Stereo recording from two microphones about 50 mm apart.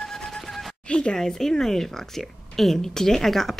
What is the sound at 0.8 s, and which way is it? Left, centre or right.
Speech, centre.